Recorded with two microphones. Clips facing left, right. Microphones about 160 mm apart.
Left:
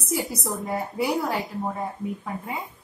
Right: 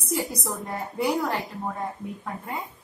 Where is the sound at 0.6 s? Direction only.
5° left (ahead or behind).